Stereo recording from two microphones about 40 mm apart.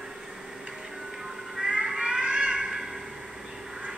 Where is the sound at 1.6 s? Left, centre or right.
Centre.